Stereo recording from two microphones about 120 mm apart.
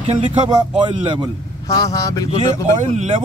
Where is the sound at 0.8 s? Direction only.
45° right (ahead or behind).